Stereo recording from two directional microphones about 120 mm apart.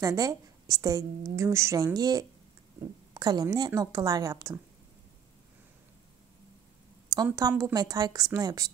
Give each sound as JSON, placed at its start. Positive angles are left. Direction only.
{"t": 0.0, "sound": "a woman's voice", "side_deg": -30}
{"t": 7.3, "sound": "a woman's voice", "side_deg": -30}